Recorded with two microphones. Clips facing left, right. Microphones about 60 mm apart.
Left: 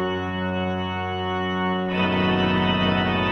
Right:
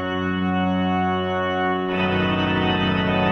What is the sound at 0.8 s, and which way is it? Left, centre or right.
Music, centre.